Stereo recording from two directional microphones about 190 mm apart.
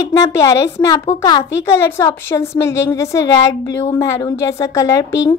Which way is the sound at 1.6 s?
15° left (ahead or behind).